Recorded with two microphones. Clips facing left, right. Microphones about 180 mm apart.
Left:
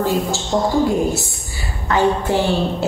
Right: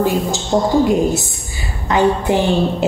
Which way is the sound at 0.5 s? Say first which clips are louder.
Right 3 dB; 30° right (ahead or behind).